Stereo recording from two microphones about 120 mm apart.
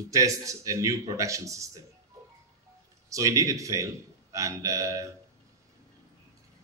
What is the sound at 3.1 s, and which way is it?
Speech, 25° right (ahead or behind).